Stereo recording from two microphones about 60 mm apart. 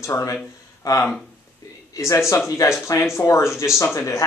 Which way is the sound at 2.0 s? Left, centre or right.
Left.